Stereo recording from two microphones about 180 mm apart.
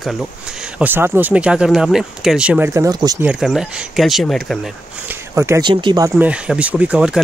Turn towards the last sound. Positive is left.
turn(degrees=-5)  # may be behind; listen again after turning